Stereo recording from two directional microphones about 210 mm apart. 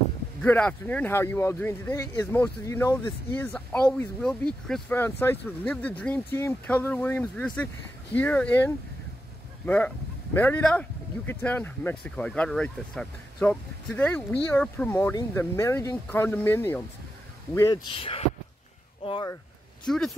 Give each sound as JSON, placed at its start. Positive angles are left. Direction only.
{"t": 0.4, "sound": "speech", "side_deg": 5}
{"t": 17.6, "sound": "speech", "side_deg": 20}
{"t": 19.9, "sound": "speech", "side_deg": 0}